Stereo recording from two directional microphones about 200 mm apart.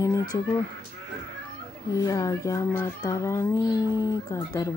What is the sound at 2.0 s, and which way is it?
Speech, 15° left (ahead or behind).